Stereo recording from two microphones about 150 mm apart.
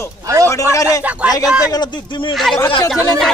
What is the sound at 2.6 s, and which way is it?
Speech, 35° left (ahead or behind).